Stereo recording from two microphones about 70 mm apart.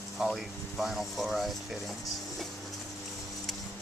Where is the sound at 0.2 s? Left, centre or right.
Centre.